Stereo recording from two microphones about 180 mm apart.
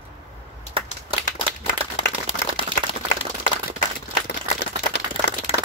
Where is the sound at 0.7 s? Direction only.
30° right (ahead or behind).